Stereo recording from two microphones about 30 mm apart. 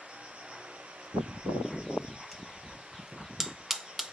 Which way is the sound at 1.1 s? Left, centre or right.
Right.